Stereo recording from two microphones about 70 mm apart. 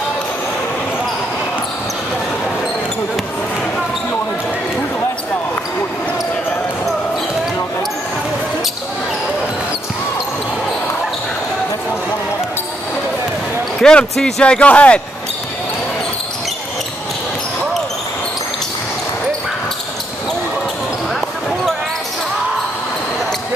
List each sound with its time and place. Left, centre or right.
13.7 s basketball bounce: centre
14.1 s speech: centre